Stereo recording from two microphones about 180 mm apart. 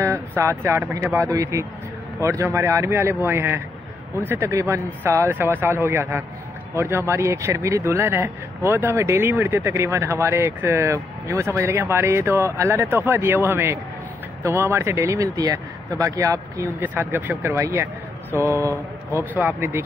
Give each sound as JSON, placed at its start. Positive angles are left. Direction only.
{"t": 0.0, "sound": "speech", "side_deg": -15}